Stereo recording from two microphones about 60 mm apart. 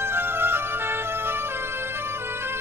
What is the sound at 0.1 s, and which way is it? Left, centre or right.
Music, right.